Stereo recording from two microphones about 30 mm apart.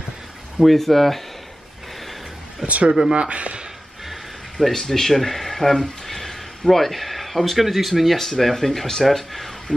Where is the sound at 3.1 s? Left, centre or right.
Right.